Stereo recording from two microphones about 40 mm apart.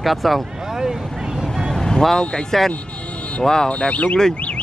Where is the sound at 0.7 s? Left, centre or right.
Centre.